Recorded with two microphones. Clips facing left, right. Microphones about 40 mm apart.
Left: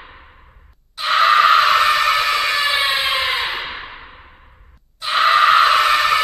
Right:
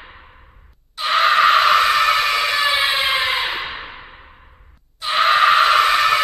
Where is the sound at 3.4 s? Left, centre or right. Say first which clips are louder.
Even; centre.